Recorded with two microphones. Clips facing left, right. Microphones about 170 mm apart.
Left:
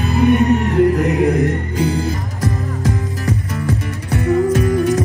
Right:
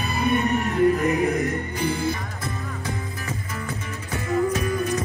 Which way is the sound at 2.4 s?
85° left.